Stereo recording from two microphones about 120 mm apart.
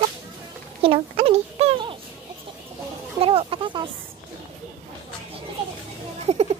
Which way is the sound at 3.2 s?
50° right (ahead or behind).